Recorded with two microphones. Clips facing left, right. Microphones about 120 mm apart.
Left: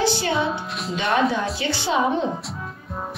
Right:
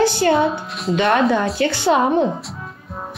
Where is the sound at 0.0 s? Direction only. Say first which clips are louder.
Right 6 dB; 50° right (ahead or behind).